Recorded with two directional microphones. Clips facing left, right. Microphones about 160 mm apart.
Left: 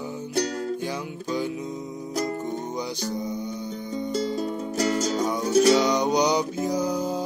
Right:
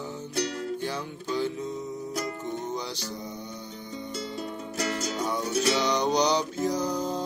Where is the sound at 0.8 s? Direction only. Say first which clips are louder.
Left 2 dB; 15° left (ahead or behind).